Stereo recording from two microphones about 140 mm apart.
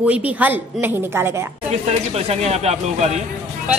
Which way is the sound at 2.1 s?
50° right (ahead or behind).